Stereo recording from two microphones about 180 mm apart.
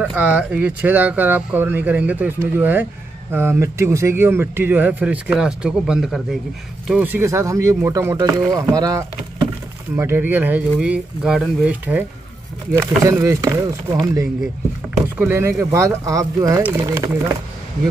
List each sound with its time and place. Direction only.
0.0 s speech: 10° right (ahead or behind)
15.0 s speech: 10° right (ahead or behind)